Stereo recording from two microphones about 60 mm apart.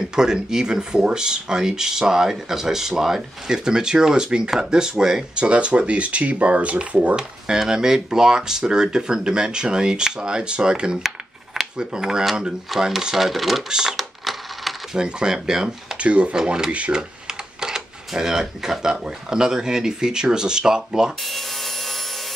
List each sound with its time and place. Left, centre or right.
0.1 s speech: centre
7.2 s speech: centre
11.0 s a sound: centre
11.7 s speech: centre
15.0 s speech: centre
16.0 s speech: right
21.2 s wood: centre